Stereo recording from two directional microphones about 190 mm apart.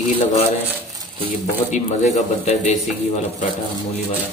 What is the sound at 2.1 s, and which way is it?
Speech, 40° left (ahead or behind).